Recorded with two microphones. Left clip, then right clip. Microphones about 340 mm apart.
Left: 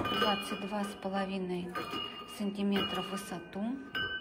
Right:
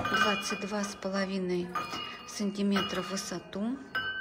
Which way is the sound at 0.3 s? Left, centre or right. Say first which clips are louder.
Right 2 dB; centre.